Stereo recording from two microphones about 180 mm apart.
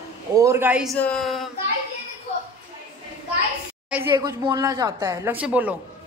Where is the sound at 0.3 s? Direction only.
15° right (ahead or behind).